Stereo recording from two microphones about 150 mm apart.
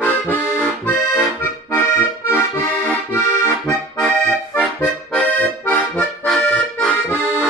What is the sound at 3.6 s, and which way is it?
Accordion, 5° left (ahead or behind).